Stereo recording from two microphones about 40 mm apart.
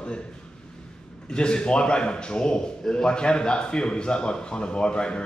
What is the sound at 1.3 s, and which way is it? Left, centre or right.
Speech, left.